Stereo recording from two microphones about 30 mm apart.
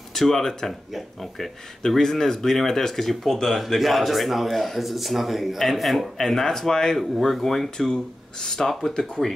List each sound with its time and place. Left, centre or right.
0.1 s speech: centre
6.1 s speech: centre
7.0 s speech: centre
8.4 s speech: centre